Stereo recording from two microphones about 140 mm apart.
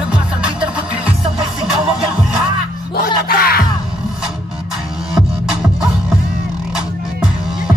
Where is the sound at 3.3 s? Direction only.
90° left.